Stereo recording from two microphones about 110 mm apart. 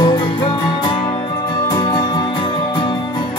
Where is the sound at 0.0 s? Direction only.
40° left (ahead or behind).